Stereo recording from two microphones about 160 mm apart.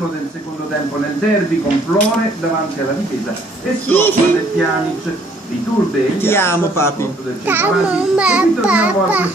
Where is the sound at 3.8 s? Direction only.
10° left (ahead or behind).